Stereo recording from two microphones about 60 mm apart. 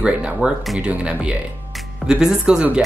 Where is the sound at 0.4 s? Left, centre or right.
Right.